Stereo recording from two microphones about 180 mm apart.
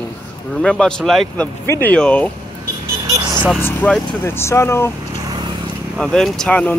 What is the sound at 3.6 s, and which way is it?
Speech, 10° left (ahead or behind).